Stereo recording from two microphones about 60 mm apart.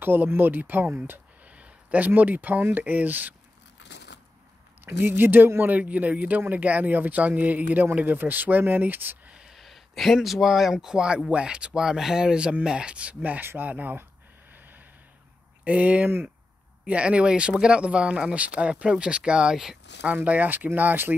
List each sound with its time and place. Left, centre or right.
0.0 s speech: right
0.9 s a sound: right
1.5 s speech: right
4.8 s speech: right
5.8 s speech: right
9.3 s a sound: centre
9.6 s speech: centre; by 14.0 s right
14.5 s snort: right
15.6 s speech: right
20.0 s speech: right